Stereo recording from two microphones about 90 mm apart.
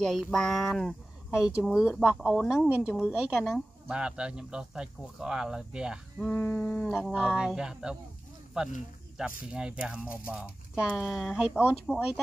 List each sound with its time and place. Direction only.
0.0 s speech: 5° left (ahead or behind)
1.4 s speech: 5° right (ahead or behind)
6.2 s a sound: 20° left (ahead or behind)
7.2 s speech: 10° right (ahead or behind)